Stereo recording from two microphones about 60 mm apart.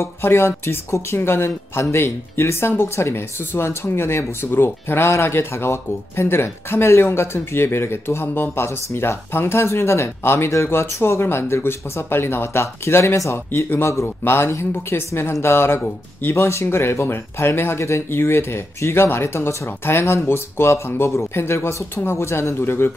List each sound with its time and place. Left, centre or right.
0.0 s speech: left